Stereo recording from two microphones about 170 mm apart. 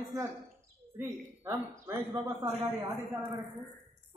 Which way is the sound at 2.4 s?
40° right (ahead or behind).